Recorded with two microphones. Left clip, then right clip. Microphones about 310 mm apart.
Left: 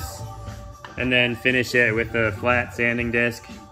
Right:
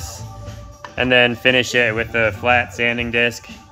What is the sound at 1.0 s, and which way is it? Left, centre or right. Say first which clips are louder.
Speech: right 6 dB; centre.